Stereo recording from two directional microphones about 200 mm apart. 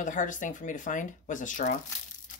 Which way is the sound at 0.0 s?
40° left (ahead or behind).